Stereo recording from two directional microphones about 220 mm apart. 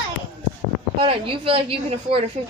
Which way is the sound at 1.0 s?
25° right (ahead or behind).